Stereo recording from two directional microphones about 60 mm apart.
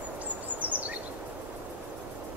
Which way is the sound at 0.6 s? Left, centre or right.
Right.